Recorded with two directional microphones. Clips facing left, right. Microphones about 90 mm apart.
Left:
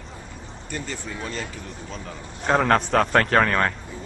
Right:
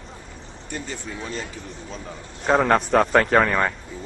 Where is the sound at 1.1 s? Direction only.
5° right (ahead or behind).